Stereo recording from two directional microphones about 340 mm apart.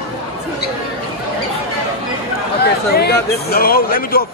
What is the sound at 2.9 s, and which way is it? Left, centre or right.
Speech, left.